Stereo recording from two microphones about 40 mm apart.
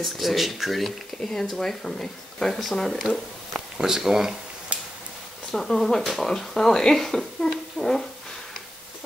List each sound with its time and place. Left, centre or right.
0.0 s speech: centre
1.2 s speech: centre
3.5 s speech: centre
4.7 s a sound: right
5.5 s speech: centre